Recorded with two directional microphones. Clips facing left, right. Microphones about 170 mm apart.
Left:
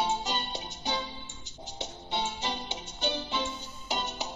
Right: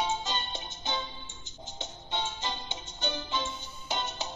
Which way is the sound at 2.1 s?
10° left (ahead or behind).